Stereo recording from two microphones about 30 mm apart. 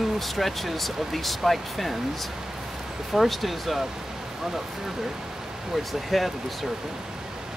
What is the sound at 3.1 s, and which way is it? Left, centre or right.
Speech, centre.